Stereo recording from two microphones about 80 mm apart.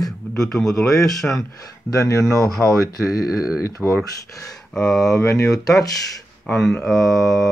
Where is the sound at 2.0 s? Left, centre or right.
Left.